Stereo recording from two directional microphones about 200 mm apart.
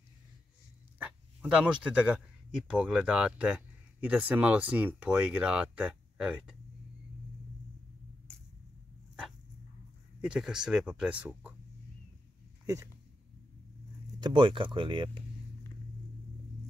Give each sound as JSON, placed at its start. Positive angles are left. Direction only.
{"t": 0.9, "sound": "speech", "side_deg": -5}
{"t": 10.2, "sound": "speech", "side_deg": -5}
{"t": 12.6, "sound": "speech", "side_deg": -15}
{"t": 14.2, "sound": "speech", "side_deg": -25}